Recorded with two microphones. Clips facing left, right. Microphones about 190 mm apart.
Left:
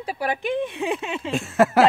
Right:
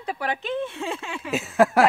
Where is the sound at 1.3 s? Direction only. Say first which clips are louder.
Even; centre (ahead or behind).